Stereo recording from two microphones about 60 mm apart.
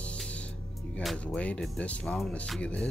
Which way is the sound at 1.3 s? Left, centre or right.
Left.